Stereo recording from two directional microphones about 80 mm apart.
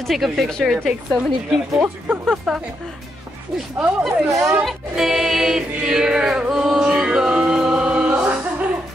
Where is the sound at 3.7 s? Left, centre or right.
Centre.